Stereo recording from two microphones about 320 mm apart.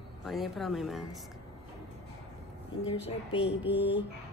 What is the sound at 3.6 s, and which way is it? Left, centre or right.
Speech, centre.